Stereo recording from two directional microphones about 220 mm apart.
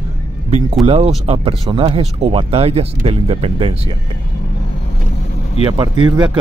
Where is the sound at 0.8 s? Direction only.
25° right (ahead or behind).